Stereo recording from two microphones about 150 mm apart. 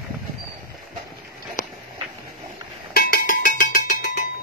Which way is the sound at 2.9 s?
65° left (ahead or behind).